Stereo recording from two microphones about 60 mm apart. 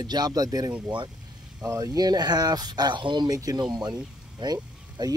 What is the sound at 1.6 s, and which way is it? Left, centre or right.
Speech, right.